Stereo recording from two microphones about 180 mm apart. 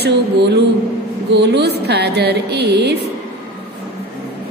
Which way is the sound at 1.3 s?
70° right (ahead or behind).